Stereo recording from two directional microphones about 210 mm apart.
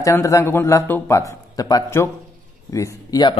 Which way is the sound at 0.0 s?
15° left (ahead or behind).